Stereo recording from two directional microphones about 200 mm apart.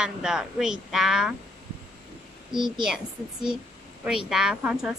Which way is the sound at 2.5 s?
25° right (ahead or behind).